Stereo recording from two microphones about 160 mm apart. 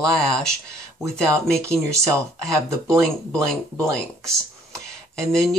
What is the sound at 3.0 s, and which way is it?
Speech, 5° left (ahead or behind).